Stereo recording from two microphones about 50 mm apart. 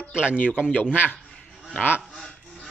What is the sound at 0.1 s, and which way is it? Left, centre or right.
A man's voice, right.